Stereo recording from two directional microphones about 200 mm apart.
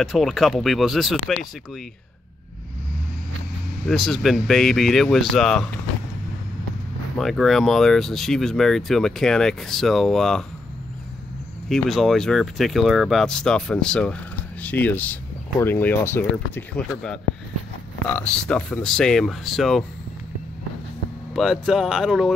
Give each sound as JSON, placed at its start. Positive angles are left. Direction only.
{"t": 0.0, "sound": "speech", "side_deg": 0}
{"t": 3.8, "sound": "speech", "side_deg": 0}
{"t": 7.2, "sound": "speech", "side_deg": 0}
{"t": 11.7, "sound": "speech", "side_deg": 0}
{"t": 21.3, "sound": "speech", "side_deg": 0}